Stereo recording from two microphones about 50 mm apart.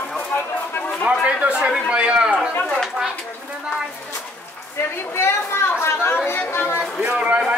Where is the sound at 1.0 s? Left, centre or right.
Right.